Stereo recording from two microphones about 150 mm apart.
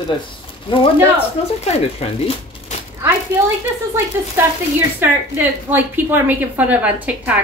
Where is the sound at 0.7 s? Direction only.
35° left (ahead or behind).